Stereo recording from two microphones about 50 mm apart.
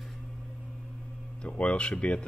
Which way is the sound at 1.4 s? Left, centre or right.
Left.